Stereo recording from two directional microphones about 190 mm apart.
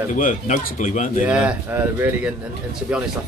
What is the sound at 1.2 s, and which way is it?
A man's voice, 5° right (ahead or behind).